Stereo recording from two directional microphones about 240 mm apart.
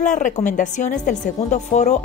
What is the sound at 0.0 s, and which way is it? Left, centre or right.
A woman's voice, left.